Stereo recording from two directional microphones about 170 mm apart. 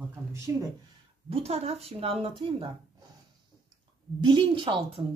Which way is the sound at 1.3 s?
35° right (ahead or behind).